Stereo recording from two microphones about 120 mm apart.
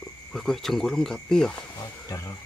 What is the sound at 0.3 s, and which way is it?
Speech, centre (ahead or behind).